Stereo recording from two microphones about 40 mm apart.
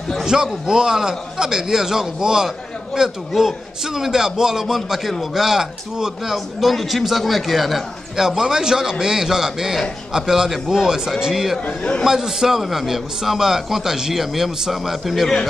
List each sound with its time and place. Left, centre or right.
0.2 s a man's voice: centre
6.3 s a man's voice: centre